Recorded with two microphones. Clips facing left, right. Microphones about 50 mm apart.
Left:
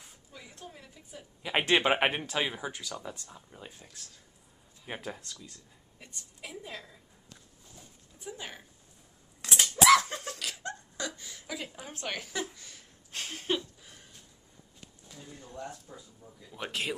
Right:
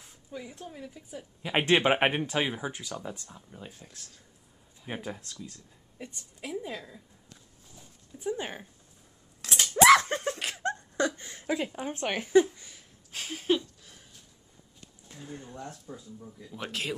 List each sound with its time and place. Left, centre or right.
0.3 s a woman's voice: centre
8.3 s speech: right
9.4 s scissors: centre
9.8 s laughter: right
12.6 s a sound: centre
15.9 s speech: centre
16.4 s a woman's voice: centre